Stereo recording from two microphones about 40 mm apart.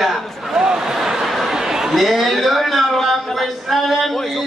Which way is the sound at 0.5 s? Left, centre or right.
Centre.